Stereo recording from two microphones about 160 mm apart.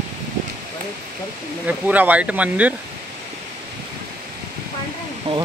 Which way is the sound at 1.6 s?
10° right (ahead or behind).